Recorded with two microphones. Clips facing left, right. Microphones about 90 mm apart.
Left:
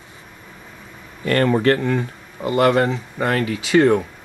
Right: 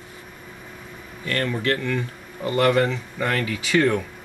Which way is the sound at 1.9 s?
20° left (ahead or behind).